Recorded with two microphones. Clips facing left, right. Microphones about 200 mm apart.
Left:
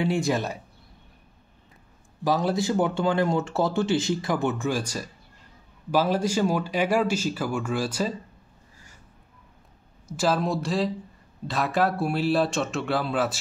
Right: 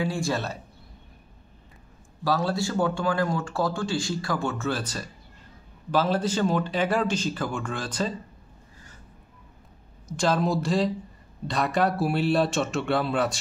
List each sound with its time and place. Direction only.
0.0 s speech: 20° left (ahead or behind)
2.2 s speech: 20° left (ahead or behind)
10.0 s speech: 5° left (ahead or behind)